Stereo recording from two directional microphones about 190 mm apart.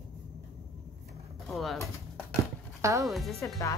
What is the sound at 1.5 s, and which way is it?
Speech, centre (ahead or behind).